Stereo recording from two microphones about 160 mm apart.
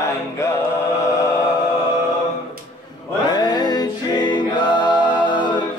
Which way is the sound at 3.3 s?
25° left (ahead or behind).